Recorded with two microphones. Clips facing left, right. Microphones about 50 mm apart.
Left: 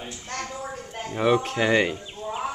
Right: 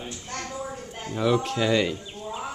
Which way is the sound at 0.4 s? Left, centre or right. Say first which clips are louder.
Even; left.